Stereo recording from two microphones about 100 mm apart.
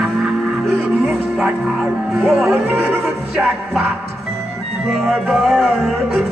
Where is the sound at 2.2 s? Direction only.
5° left (ahead or behind).